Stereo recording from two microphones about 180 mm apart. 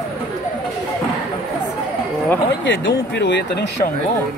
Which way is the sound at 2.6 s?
85° left.